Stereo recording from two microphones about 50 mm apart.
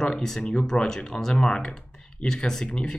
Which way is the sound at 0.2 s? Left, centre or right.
Centre.